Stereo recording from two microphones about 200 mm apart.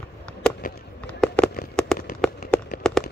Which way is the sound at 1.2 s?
5° left (ahead or behind).